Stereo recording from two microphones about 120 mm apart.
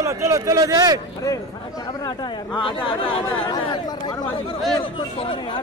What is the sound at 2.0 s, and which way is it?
Speech, 40° left (ahead or behind).